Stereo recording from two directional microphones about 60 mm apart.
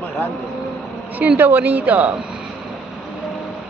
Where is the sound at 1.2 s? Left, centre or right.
Right.